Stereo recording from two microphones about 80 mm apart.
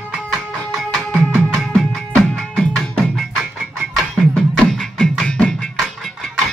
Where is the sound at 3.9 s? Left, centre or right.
Centre.